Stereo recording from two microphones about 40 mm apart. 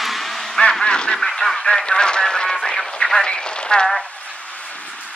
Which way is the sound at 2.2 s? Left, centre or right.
Centre.